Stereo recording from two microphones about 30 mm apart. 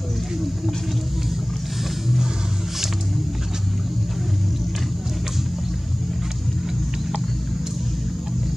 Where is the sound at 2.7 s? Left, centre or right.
Centre.